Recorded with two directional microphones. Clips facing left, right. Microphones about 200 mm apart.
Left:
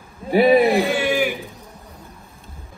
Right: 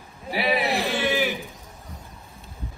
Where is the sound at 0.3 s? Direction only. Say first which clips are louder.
Left 11 dB; 50° left (ahead or behind).